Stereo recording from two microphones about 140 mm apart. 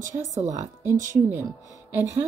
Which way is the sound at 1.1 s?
20° right (ahead or behind).